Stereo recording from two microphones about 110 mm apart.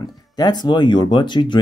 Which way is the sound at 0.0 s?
40° left (ahead or behind).